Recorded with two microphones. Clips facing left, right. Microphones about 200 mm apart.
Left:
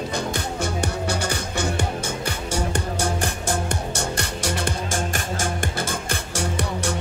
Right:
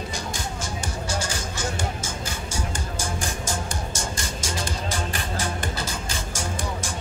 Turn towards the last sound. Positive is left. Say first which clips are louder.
# left 5 dB
turn(degrees=65)  # may be behind; listen again after turning